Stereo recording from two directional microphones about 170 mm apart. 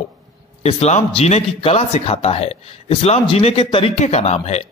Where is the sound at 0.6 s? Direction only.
35° left (ahead or behind).